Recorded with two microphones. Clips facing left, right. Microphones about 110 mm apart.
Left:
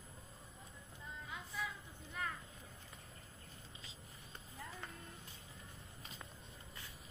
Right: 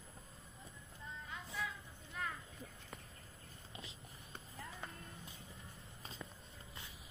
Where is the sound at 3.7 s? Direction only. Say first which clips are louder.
Right 4 dB; 65° right (ahead or behind).